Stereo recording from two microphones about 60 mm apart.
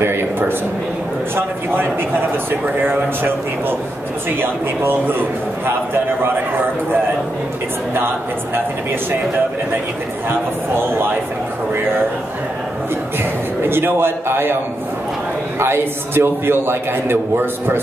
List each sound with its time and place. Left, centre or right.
0.0 s a man's voice: right
10.7 s a man's voice: right
13.2 s a man's voice: right
15.6 s a man's voice: right